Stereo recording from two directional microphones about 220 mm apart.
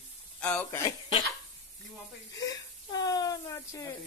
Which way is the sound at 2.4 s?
15° left (ahead or behind).